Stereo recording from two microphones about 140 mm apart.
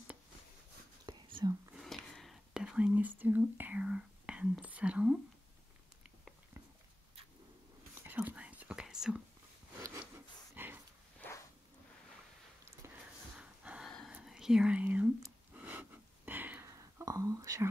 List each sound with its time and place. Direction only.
1.0 s whispering: 30° right (ahead or behind)
1.8 s whispering: 5° left (ahead or behind)
8.0 s whispering: 15° right (ahead or behind)
10.5 s dog: 15° right (ahead or behind)
13.4 s a sound: 5° right (ahead or behind)
14.1 s whispering: 5° right (ahead or behind)
15.5 s a sound: 10° right (ahead or behind)